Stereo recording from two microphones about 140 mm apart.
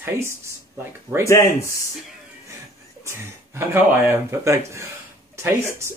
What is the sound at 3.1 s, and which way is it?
Speech, 15° right (ahead or behind).